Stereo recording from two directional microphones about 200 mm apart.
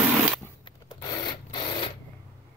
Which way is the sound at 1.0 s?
25° left (ahead or behind).